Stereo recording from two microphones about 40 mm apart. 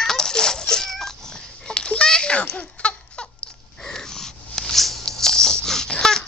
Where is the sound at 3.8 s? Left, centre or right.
Centre.